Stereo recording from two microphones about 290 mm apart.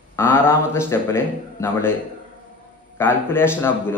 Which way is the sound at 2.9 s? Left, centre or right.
Centre.